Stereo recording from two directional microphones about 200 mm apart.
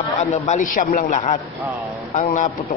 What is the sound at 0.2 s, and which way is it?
A man's voice, 35° left (ahead or behind).